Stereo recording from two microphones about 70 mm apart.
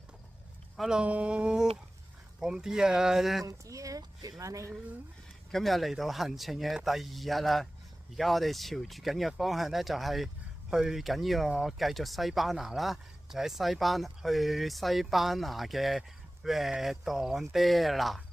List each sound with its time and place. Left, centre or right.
0.7 s speech: centre
3.4 s a woman's voice: right
5.5 s speech: centre